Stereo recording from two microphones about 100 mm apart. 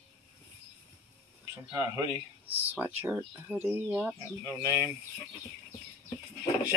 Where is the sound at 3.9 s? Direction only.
10° left (ahead or behind).